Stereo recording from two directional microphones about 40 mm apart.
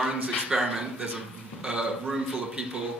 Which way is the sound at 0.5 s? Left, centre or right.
Centre.